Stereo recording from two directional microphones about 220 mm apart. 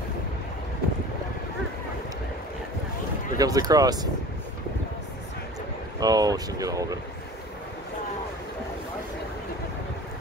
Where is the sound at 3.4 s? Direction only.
15° right (ahead or behind).